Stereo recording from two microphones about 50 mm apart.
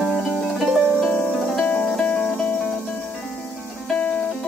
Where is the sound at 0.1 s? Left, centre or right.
Centre.